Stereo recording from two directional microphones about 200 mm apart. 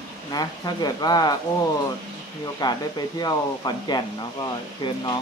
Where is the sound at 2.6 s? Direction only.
20° left (ahead or behind).